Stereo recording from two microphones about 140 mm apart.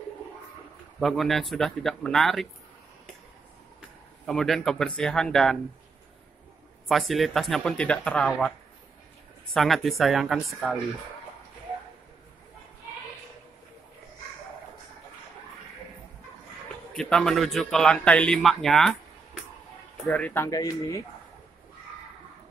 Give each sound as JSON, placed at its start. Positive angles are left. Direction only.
{"t": 0.9, "sound": "a man's voice", "side_deg": 0}
{"t": 4.3, "sound": "a man's voice", "side_deg": 5}
{"t": 6.9, "sound": "a man's voice", "side_deg": 0}
{"t": 16.9, "sound": "a man's voice", "side_deg": 5}
{"t": 20.1, "sound": "speech", "side_deg": 10}
{"t": 20.4, "sound": "speech", "side_deg": 25}